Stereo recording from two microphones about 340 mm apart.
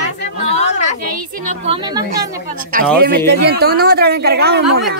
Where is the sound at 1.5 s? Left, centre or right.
Centre.